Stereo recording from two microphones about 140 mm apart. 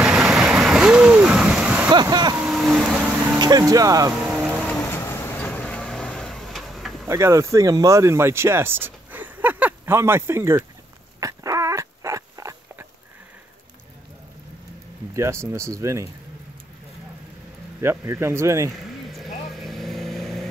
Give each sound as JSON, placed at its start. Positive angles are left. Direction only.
{"t": 0.0, "sound": "a sound", "side_deg": -5}
{"t": 1.9, "sound": "vehicle", "side_deg": -30}
{"t": 2.5, "sound": "vehicle", "side_deg": 0}
{"t": 3.3, "sound": "speech", "side_deg": -25}
{"t": 4.1, "sound": "vehicle", "side_deg": -5}
{"t": 4.8, "sound": "vehicle", "side_deg": 20}
{"t": 7.1, "sound": "speech", "side_deg": -20}
{"t": 11.1, "sound": "dog", "side_deg": -25}
{"t": 15.1, "sound": "speech", "side_deg": -20}
{"t": 17.7, "sound": "speech", "side_deg": -20}
{"t": 19.0, "sound": "vehicle", "side_deg": 0}